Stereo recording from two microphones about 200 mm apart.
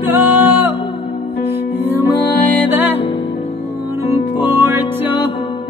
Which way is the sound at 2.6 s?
10° right (ahead or behind).